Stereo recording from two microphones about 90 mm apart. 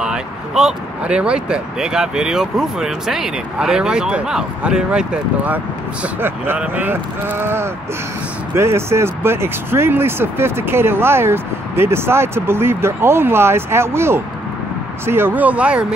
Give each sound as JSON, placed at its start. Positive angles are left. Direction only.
{"t": 0.0, "sound": "speech", "side_deg": -5}